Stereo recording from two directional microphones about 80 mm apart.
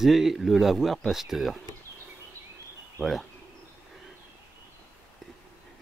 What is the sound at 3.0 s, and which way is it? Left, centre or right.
Speech, right.